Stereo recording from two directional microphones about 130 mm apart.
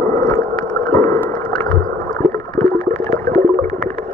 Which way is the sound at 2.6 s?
15° left (ahead or behind).